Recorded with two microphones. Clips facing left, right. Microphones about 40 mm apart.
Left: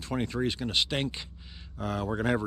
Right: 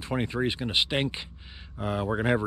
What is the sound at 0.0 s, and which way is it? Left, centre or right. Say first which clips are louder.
Speech: right 2 dB; right.